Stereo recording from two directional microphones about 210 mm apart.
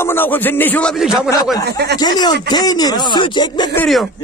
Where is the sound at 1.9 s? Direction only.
20° left (ahead or behind).